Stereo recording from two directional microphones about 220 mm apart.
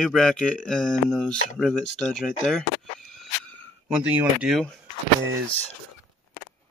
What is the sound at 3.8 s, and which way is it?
Speech, 5° right (ahead or behind).